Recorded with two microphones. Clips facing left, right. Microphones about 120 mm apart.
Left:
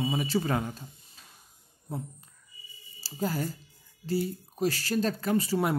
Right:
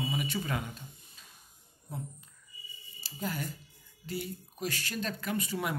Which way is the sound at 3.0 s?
35° left (ahead or behind).